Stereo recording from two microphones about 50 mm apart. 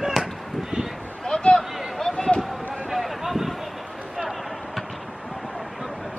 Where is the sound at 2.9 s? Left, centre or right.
Centre.